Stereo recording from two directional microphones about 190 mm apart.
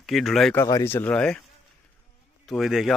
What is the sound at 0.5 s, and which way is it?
Speech, 15° left (ahead or behind).